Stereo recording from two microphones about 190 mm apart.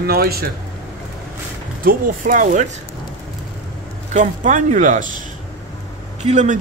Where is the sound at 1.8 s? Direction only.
45° right (ahead or behind).